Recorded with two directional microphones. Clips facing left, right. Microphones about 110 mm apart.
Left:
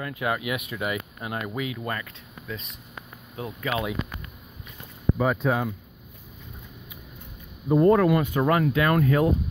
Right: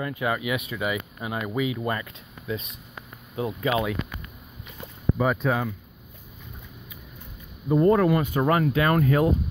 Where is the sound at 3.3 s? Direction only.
20° right (ahead or behind).